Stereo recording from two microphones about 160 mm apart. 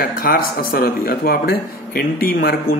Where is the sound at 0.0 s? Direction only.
70° left (ahead or behind).